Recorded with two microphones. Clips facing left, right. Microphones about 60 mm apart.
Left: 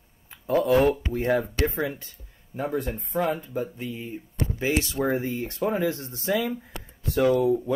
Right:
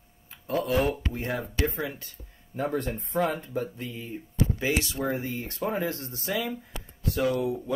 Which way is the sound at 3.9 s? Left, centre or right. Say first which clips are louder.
Left 3 dB; left.